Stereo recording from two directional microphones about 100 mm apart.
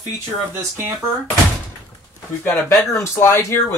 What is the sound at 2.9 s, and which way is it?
Speech, 25° left (ahead or behind).